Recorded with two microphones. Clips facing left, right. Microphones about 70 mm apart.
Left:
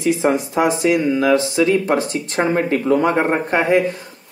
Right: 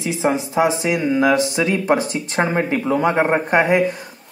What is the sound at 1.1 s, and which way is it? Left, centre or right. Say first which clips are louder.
Speech: left 1 dB; right.